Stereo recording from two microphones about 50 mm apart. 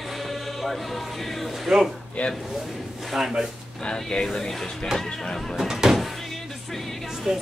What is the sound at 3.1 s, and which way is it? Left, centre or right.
Speech, centre.